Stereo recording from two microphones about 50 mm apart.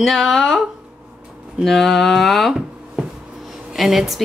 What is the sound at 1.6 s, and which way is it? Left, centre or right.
Speech, centre.